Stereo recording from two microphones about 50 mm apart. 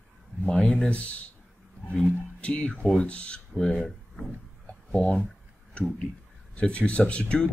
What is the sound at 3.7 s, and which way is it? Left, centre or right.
Speech, centre.